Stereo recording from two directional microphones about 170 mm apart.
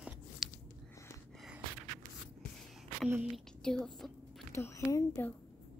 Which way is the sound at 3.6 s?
5° left (ahead or behind).